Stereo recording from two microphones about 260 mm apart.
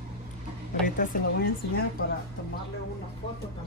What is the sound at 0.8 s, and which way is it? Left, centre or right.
Speech, left.